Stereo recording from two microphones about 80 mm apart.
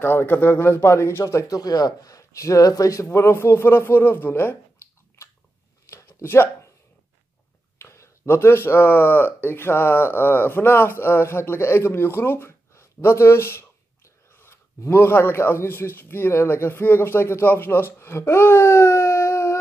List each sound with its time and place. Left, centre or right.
0.0 s speech: left
1.3 s speech: left
5.9 s a sound: left
7.8 s speech: left